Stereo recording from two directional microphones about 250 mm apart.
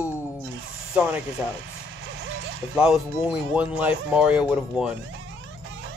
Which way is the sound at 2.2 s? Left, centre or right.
Right.